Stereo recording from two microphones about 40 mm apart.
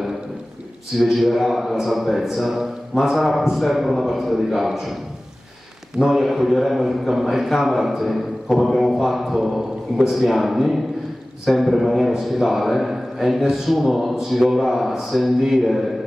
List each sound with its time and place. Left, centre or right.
1.0 s a man's voice: centre
5.9 s a man's voice: centre